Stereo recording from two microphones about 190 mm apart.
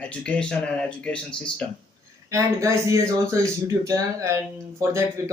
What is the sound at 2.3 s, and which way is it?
Speech, 15° right (ahead or behind).